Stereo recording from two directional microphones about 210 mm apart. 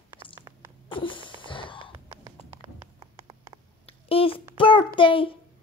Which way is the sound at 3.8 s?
25° left (ahead or behind).